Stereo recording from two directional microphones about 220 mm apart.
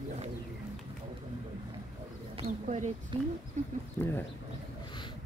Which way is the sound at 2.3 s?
30° right (ahead or behind).